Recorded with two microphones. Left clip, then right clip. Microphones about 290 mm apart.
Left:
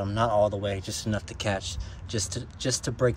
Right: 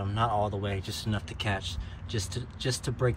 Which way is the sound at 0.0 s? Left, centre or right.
Centre.